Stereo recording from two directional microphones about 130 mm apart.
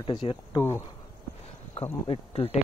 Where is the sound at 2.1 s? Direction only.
50° left (ahead or behind).